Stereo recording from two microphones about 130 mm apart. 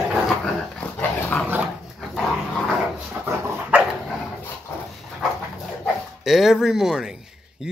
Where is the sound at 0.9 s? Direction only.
15° left (ahead or behind).